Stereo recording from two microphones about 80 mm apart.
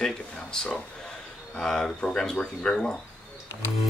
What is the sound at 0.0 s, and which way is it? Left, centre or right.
Speech, centre.